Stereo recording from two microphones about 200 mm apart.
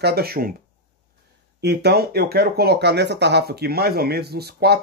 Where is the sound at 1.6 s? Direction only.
55° right (ahead or behind).